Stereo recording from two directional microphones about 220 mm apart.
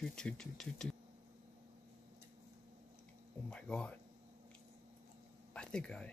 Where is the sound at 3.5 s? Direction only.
5° left (ahead or behind).